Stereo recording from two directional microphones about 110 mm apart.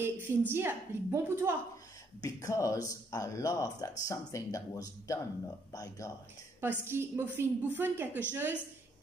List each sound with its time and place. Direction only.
0.0 s a sound: 20° right (ahead or behind)
0.5 s a woman's voice: 20° right (ahead or behind)
2.2 s speech: 30° left (ahead or behind)
6.6 s a woman's voice: 20° right (ahead or behind)